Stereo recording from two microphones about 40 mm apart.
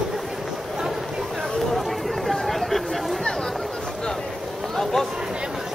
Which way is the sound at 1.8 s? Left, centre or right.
Centre.